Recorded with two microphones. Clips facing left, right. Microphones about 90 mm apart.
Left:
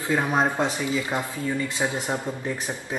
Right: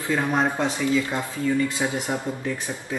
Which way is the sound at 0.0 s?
15° left (ahead or behind).